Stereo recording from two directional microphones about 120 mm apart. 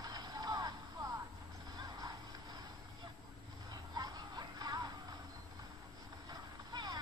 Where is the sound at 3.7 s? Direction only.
35° right (ahead or behind).